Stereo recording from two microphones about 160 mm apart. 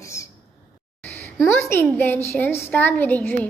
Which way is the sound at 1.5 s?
15° left (ahead or behind).